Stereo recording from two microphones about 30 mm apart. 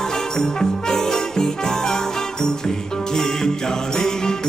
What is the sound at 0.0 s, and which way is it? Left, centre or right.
Music, centre.